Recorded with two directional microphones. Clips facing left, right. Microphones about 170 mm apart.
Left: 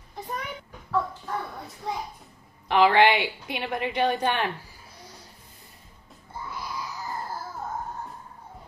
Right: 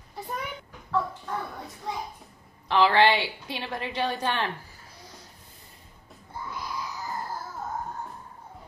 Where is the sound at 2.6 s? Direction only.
15° left (ahead or behind).